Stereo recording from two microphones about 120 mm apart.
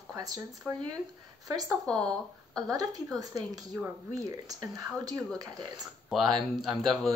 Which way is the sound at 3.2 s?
30° right (ahead or behind).